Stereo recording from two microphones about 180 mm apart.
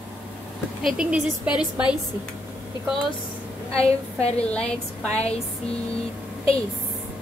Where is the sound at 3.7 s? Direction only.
35° left (ahead or behind).